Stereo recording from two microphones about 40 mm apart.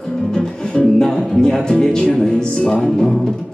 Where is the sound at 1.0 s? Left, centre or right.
Centre.